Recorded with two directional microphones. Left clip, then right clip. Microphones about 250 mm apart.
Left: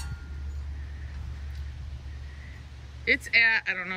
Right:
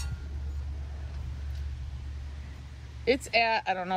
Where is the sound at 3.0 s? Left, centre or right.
Right.